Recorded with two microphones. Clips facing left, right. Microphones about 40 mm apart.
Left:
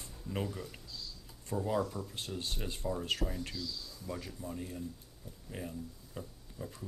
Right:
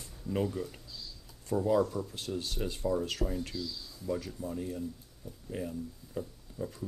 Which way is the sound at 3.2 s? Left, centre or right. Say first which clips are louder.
Right 4 dB; centre.